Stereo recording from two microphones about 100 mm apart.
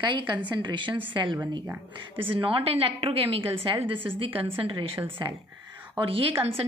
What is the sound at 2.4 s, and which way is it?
A woman's voice, 65° right (ahead or behind).